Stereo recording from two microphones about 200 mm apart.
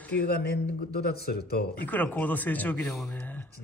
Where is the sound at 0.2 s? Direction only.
50° left (ahead or behind).